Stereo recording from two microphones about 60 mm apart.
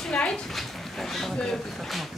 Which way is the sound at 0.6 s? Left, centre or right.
Centre.